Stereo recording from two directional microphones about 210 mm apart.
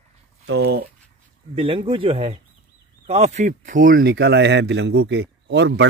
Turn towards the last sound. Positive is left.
turn(degrees=-55)  # may be behind; listen again after turning